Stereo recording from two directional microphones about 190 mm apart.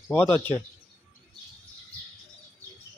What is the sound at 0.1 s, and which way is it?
Speech, 10° left (ahead or behind).